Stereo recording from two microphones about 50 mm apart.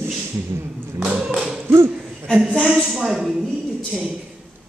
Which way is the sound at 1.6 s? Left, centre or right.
Right.